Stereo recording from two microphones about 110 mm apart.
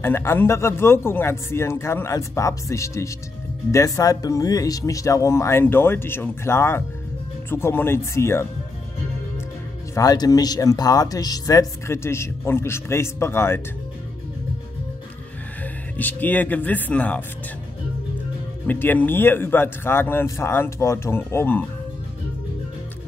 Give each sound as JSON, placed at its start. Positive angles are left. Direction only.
{"t": 0.0, "sound": "speech", "side_deg": 20}
{"t": 9.9, "sound": "speech", "side_deg": 35}
{"t": 16.0, "sound": "speech", "side_deg": 15}
{"t": 18.7, "sound": "speech", "side_deg": 15}